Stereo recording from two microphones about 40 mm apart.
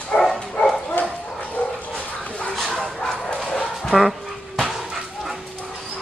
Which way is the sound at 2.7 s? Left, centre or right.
Centre.